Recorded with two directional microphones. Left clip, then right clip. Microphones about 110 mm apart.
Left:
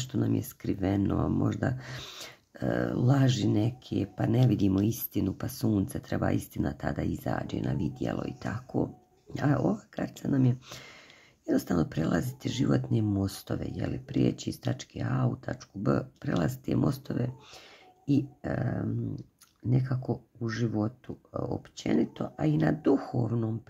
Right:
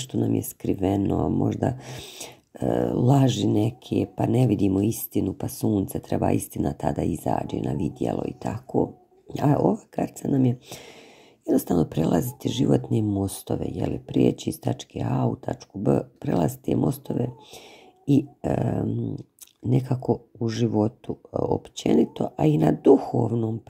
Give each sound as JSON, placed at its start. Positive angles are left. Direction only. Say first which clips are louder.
{"t": 0.0, "sound": "speech", "louder": "right 5 dB", "side_deg": -25}
{"t": 2.0, "sound": "speech", "louder": "right 3 dB", "side_deg": -5}
{"t": 2.2, "sound": "speech", "louder": "right 7 dB", "side_deg": -25}
{"t": 18.0, "sound": "speech", "louder": "right 7 dB", "side_deg": -35}
{"t": 21.1, "sound": "speech", "louder": "right 10 dB", "side_deg": 5}
{"t": 21.5, "sound": "speech", "louder": "right 8 dB", "side_deg": -40}